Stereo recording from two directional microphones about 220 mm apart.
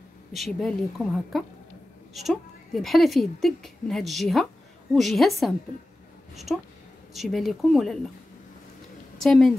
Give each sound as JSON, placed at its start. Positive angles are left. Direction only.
{"t": 0.3, "sound": "a woman's voice", "side_deg": 0}
{"t": 9.2, "sound": "a woman's voice", "side_deg": 0}